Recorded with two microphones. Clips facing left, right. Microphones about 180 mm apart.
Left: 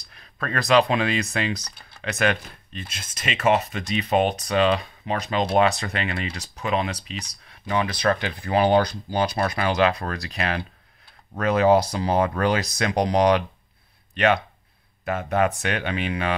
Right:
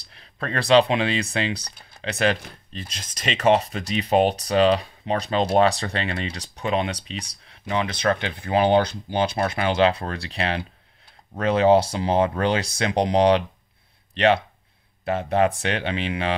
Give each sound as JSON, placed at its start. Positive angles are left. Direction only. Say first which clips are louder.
{"t": 0.0, "sound": "speech", "louder": "right 1 dB", "side_deg": -30}